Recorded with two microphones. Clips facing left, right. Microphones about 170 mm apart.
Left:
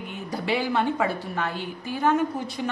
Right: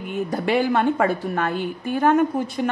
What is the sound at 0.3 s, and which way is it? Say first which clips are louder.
A woman's voice: right 5 dB; 50° right (ahead or behind).